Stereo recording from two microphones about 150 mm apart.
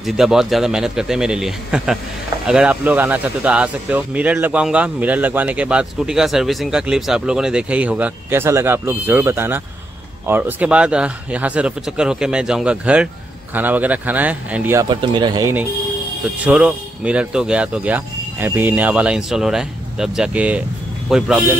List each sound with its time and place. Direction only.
0.0 s a man's voice: 5° right (ahead or behind)
14.8 s speech: 30° right (ahead or behind)
16.4 s a man's voice: 5° right (ahead or behind)